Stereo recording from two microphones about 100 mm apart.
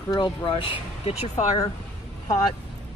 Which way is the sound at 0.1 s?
40° left (ahead or behind).